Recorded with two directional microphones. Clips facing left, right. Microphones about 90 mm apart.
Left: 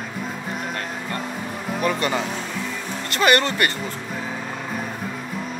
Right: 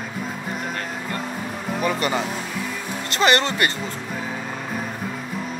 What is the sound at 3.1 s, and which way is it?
Speech, 25° right (ahead or behind).